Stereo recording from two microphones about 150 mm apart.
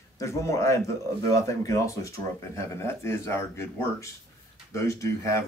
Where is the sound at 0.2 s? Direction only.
20° left (ahead or behind).